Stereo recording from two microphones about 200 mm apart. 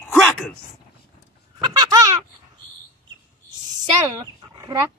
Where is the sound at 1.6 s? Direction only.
20° right (ahead or behind).